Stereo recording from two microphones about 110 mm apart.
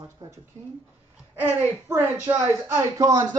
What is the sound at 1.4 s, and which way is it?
A woman's voice, 20° right (ahead or behind).